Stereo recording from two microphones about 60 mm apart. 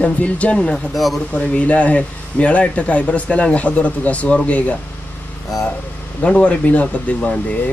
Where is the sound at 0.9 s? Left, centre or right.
Centre.